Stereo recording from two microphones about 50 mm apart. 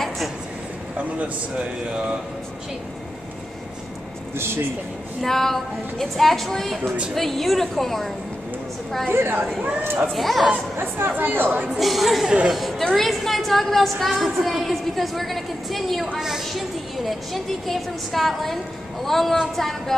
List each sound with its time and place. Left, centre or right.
0.9 s speech: right
5.2 s a woman's voice: centre
9.1 s speech: right
10.1 s a woman's voice: centre
10.8 s speech: right
11.8 s a woman's voice: centre
16.2 s a woman's voice: centre